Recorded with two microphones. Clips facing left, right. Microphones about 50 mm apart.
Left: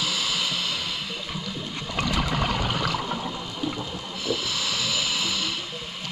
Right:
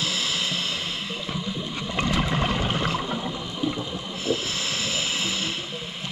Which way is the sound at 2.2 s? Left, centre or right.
Right.